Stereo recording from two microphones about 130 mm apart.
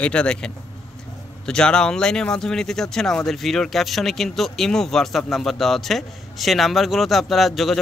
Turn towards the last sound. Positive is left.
turn(degrees=0)  # may be behind; listen again after turning